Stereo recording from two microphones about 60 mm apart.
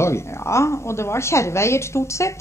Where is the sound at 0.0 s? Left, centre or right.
Left.